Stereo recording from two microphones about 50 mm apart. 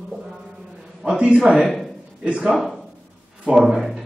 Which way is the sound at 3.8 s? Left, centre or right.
Centre.